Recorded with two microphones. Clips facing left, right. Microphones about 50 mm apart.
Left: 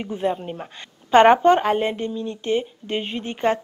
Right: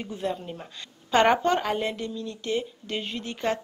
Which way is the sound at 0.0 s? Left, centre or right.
Left.